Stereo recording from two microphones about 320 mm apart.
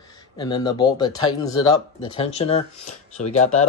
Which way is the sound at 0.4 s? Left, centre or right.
Centre.